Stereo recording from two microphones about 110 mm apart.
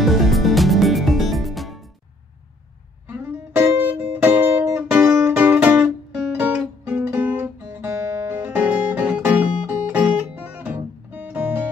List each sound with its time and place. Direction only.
0.0 s music: centre (ahead or behind)
3.1 s music: 20° right (ahead or behind)